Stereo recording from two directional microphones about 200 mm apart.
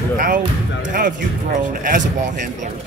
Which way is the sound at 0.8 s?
45° right (ahead or behind).